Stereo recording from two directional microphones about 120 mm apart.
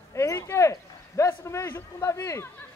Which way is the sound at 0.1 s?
25° left (ahead or behind).